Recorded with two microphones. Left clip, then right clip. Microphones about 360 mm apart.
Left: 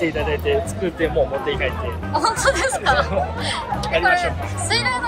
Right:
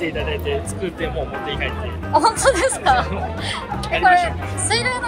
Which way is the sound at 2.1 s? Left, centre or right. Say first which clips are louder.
Right 3 dB; centre.